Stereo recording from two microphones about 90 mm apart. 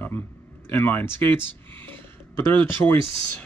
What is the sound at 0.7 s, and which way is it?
Speech, 25° left (ahead or behind).